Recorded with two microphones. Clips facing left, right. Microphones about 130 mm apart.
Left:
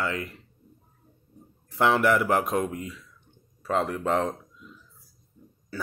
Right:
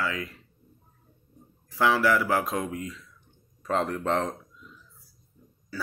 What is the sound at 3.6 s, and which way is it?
Speech, 5° left (ahead or behind).